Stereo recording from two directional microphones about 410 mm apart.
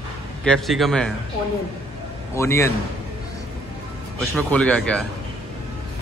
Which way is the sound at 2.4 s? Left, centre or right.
Centre.